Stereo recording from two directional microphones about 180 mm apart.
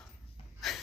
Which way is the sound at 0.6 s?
Centre (ahead or behind).